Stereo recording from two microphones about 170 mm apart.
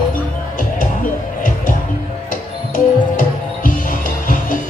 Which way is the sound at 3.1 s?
55° left (ahead or behind).